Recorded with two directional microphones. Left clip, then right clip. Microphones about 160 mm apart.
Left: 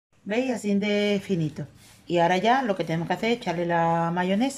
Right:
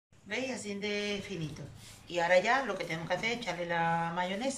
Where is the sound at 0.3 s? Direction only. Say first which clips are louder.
Left 10 dB; 50° left (ahead or behind).